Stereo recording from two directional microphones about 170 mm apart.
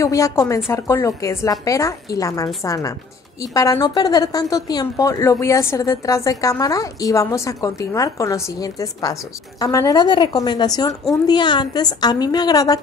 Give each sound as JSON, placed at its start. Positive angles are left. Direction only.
{"t": 0.0, "sound": "a woman's voice", "side_deg": 20}